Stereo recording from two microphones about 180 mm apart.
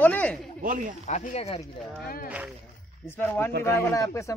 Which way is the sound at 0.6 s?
50° right (ahead or behind).